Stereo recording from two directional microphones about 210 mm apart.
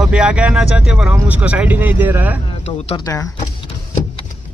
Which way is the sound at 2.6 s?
30° left (ahead or behind).